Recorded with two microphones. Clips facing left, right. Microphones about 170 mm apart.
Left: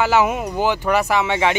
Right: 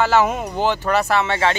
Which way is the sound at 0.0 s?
15° left (ahead or behind).